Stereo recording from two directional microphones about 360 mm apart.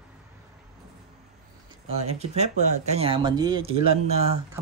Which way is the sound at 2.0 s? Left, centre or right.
Centre.